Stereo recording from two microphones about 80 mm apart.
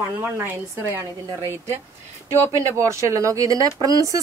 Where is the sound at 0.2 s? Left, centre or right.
Right.